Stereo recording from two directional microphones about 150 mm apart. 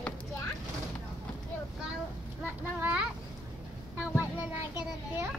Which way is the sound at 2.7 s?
10° right (ahead or behind).